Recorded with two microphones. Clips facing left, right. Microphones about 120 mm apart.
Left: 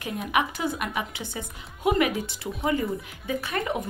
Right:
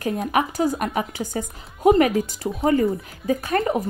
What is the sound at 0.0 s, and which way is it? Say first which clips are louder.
A woman's voice: right 4 dB; 40° right (ahead or behind).